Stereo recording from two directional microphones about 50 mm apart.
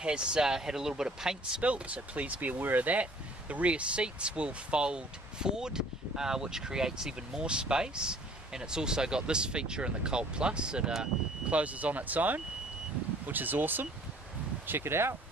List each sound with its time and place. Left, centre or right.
0.0 s speech: centre
1.6 s speech: right
11.5 s speech: right
14.7 s speech: right